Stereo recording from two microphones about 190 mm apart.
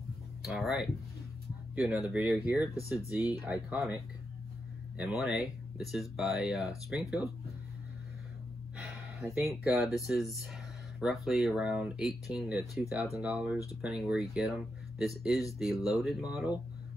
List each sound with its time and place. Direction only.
0.4 s speech: centre (ahead or behind)
2.7 s speech: 15° left (ahead or behind)
3.4 s speech: 5° right (ahead or behind)
8.7 s speech: centre (ahead or behind)